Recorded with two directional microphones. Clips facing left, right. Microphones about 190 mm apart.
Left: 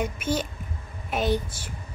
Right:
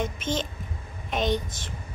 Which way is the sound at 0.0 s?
10° left (ahead or behind).